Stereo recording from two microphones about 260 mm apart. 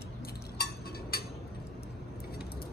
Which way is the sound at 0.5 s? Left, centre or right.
Left.